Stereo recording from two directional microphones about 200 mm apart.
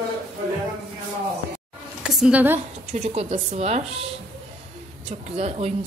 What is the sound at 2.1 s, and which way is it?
Speech, 5° right (ahead or behind).